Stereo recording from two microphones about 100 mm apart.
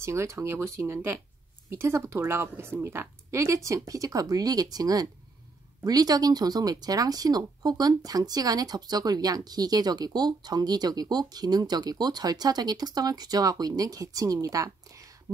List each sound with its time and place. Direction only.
0.0 s a woman's voice: 30° right (ahead or behind)